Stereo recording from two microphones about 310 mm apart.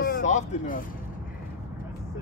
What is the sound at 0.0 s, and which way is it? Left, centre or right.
Vehicle, left.